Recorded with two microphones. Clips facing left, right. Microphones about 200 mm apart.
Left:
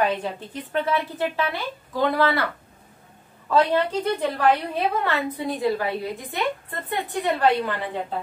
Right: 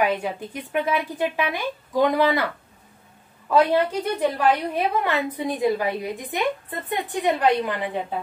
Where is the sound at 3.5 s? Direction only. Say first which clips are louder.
Right 1 dB; 10° right (ahead or behind).